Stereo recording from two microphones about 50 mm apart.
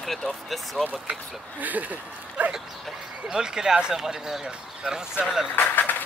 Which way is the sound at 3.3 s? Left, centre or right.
Centre.